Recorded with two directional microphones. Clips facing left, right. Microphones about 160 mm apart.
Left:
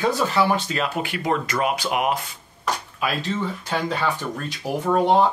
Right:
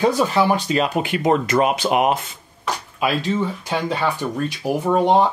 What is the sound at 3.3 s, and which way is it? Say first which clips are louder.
Speech: right 3 dB; 10° right (ahead or behind).